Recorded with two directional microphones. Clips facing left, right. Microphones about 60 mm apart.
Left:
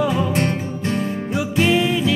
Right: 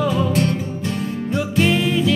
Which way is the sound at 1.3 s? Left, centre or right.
Centre.